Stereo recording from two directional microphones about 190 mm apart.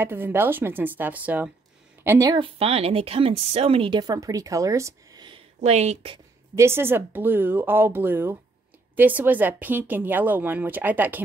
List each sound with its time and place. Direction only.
0.0 s speech: 10° right (ahead or behind)
5.6 s a woman's voice: 35° right (ahead or behind)
6.5 s speech: 15° right (ahead or behind)